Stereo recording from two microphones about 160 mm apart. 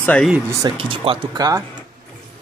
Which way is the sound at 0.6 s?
30° right (ahead or behind).